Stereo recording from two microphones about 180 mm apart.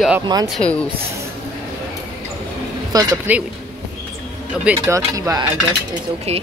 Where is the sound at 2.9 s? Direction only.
20° right (ahead or behind).